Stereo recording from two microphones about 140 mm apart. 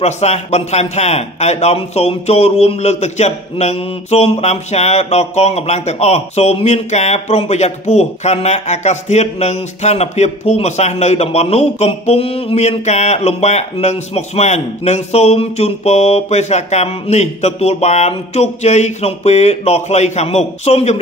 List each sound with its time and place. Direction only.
0.0 s a man's voice: 50° left (ahead or behind)